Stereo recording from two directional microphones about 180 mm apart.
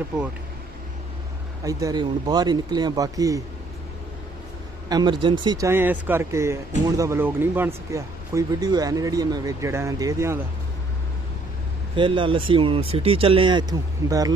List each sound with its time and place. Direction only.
1.6 s speech: 20° right (ahead or behind)
4.8 s speech: 25° right (ahead or behind)
11.9 s speech: 30° right (ahead or behind)